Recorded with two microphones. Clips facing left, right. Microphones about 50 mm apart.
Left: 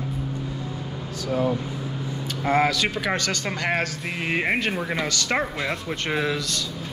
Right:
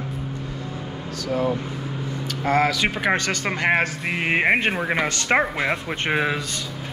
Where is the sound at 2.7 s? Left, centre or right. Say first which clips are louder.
Right 3 dB; right.